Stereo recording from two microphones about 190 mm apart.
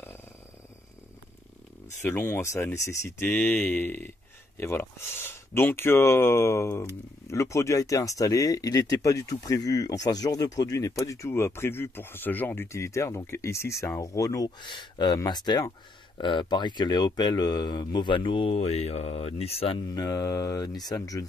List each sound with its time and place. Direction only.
2.0 s speech: 10° left (ahead or behind); by 19.8 s 30° left (ahead or behind)
19.9 s speech: 20° left (ahead or behind)